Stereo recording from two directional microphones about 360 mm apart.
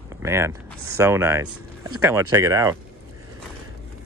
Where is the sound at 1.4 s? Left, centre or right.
Right.